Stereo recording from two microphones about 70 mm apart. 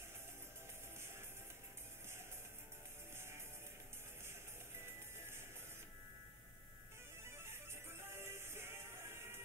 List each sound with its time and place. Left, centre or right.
3.2 s music: right
4.7 s music: right
7.3 s music: right